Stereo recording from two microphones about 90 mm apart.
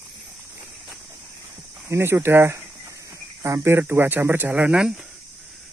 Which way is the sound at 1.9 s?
25° right (ahead or behind).